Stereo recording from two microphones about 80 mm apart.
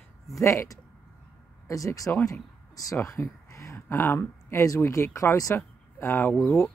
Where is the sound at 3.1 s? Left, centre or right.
Left.